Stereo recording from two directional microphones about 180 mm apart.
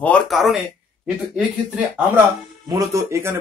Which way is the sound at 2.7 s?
15° right (ahead or behind).